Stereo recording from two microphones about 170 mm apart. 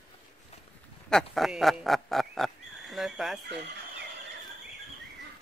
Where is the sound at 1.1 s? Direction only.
Centre (ahead or behind).